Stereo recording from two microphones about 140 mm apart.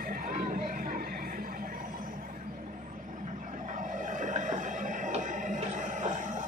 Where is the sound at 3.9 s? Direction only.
65° right (ahead or behind).